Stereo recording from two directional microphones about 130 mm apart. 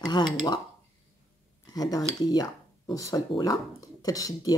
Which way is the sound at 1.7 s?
30° left (ahead or behind).